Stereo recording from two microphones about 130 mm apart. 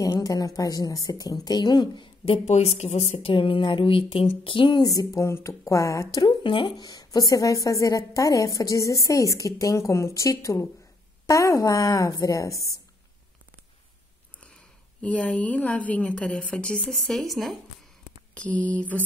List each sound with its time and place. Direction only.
0.0 s speech: 25° left (ahead or behind); by 3.3 s 60° left (ahead or behind)
3.3 s speech: 40° left (ahead or behind); by 12.7 s 25° left (ahead or behind)
14.4 s a woman's voice: 10° left (ahead or behind)
18.3 s a sound: 10° left (ahead or behind)